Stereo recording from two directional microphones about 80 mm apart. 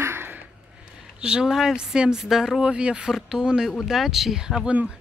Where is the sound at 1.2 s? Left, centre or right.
Centre.